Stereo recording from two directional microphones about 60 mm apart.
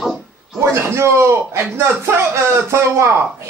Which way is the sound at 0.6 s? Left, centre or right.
Right.